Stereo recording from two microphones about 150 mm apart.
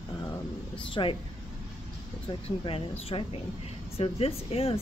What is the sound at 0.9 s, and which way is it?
Speech, 35° left (ahead or behind).